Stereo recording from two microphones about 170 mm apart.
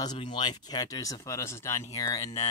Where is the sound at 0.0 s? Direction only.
25° left (ahead or behind).